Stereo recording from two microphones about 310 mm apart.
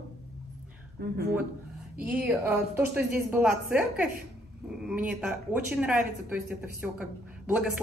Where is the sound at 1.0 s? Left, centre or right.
Right.